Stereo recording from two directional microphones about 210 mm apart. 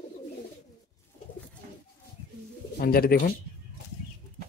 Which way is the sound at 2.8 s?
45° left (ahead or behind).